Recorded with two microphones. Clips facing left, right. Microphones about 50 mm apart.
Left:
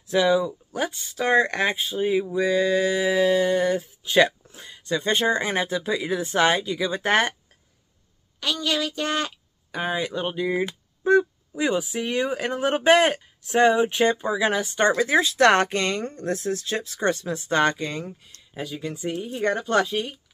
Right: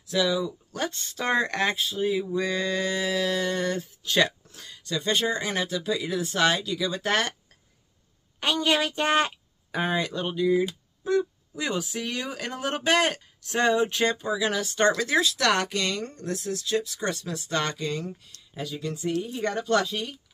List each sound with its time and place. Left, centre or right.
0.1 s speech: left
0.7 s speech: centre
1.8 s speech: left
2.3 s speech: centre
8.4 s a woman's voice: right
9.7 s a sound: centre
9.9 s speech: centre
11.0 s speech: left
11.5 s speech: centre